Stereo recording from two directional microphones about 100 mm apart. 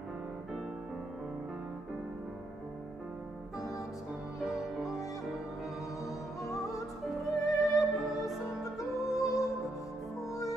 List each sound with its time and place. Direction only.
4.4 s music: centre (ahead or behind)
6.0 s music: centre (ahead or behind)
8.7 s music: 35° left (ahead or behind)